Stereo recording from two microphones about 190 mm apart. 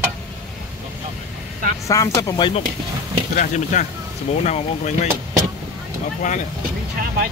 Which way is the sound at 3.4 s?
40° left (ahead or behind).